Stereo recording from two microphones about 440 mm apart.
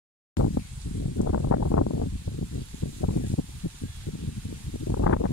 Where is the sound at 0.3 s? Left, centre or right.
Left.